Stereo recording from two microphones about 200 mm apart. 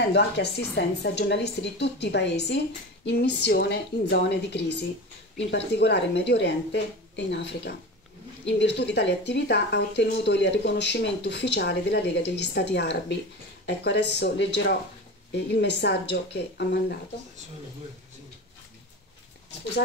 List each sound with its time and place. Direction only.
0.1 s speech: 60° left (ahead or behind)